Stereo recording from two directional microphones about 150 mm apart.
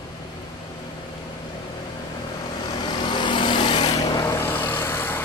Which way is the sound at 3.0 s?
30° left (ahead or behind).